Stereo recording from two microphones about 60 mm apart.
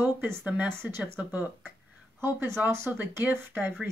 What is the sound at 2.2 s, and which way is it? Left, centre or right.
Speech, right.